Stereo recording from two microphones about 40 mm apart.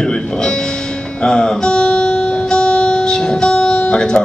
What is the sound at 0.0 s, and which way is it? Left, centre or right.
Speech, centre.